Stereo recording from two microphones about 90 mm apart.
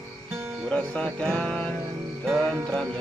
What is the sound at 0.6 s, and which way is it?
Music, 10° left (ahead or behind).